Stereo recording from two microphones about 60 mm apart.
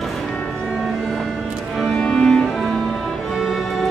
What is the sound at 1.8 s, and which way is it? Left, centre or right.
Music, centre.